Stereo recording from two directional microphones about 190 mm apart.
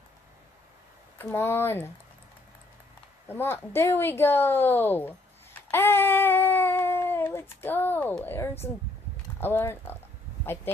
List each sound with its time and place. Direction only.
1.1 s speech: 10° left (ahead or behind)
3.3 s speech: 10° left (ahead or behind)
9.1 s a sound: 10° left (ahead or behind)
10.4 s speech: 10° left (ahead or behind)